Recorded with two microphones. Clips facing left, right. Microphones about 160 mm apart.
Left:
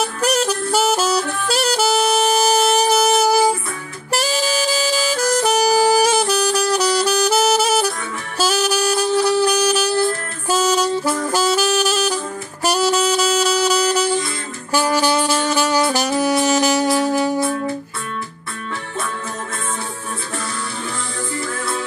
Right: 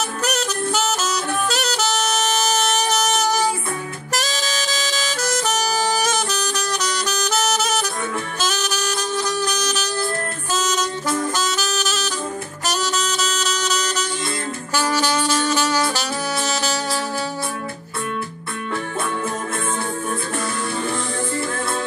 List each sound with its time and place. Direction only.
0.7 s saxophone: 10° left (ahead or behind)
0.9 s music: 35° left (ahead or behind)
1.7 s music: 10° left (ahead or behind)
4.2 s saxophone: 10° left (ahead or behind)